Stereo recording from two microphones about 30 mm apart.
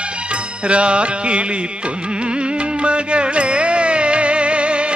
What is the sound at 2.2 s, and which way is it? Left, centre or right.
Music, right.